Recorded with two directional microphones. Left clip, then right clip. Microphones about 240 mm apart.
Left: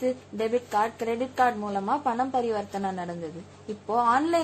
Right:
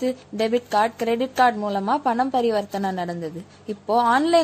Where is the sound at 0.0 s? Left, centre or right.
Right.